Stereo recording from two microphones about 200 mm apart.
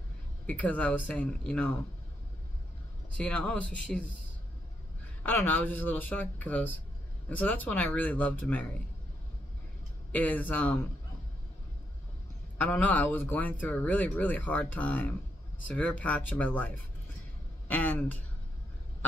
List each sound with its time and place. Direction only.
0.5 s speech: 5° left (ahead or behind)
3.2 s speech: 5° left (ahead or behind)
5.2 s speech: 10° left (ahead or behind)
10.1 s speech: 10° left (ahead or behind)
12.5 s speech: 5° left (ahead or behind)